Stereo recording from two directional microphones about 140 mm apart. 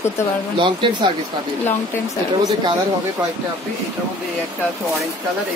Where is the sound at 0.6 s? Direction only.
35° right (ahead or behind).